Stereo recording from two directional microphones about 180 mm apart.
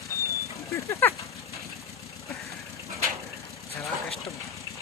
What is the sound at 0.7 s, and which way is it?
Speech, 15° left (ahead or behind).